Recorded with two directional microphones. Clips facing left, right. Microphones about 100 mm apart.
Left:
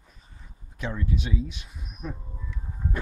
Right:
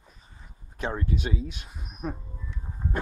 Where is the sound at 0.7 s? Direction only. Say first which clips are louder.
Right 1 dB; 40° right (ahead or behind).